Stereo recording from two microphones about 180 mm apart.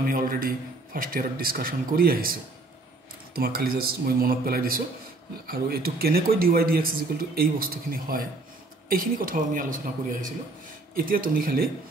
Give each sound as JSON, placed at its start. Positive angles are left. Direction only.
{"t": 0.0, "sound": "a man's voice", "side_deg": -50}
{"t": 3.3, "sound": "a man's voice", "side_deg": -55}
{"t": 11.1, "sound": "a man's voice", "side_deg": -50}